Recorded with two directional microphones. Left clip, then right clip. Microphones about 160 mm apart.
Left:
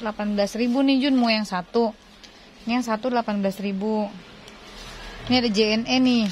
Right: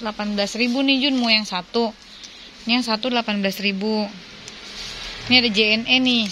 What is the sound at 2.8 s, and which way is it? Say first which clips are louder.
Speech: right 2 dB; 10° left (ahead or behind).